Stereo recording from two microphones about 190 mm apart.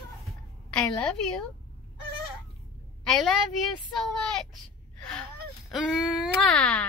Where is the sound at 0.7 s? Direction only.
5° left (ahead or behind).